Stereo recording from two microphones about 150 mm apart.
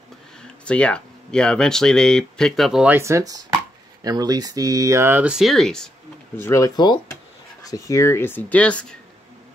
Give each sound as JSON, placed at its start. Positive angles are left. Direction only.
{"t": 0.4, "sound": "speech", "side_deg": 5}
{"t": 3.0, "sound": "speech", "side_deg": -20}
{"t": 6.3, "sound": "speech", "side_deg": 20}